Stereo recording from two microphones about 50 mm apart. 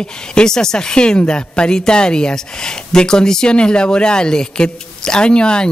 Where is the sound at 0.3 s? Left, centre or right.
Centre.